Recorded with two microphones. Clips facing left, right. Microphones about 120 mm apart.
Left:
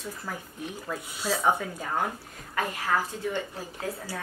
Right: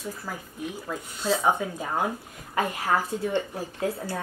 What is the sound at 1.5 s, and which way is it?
A woman's voice, 15° right (ahead or behind).